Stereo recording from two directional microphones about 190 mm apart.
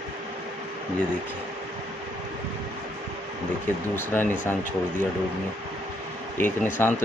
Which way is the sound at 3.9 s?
10° left (ahead or behind).